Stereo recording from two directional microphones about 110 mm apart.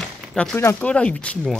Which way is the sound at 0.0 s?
5° left (ahead or behind).